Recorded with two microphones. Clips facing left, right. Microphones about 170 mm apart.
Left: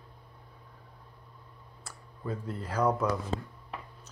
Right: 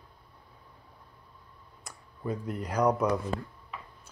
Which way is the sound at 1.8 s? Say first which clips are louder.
Right 3 dB; 15° right (ahead or behind).